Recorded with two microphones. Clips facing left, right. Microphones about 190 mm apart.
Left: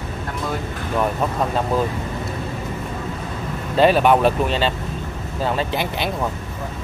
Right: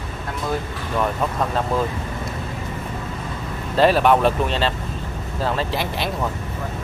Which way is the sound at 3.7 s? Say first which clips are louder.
Left 1 dB; centre (ahead or behind).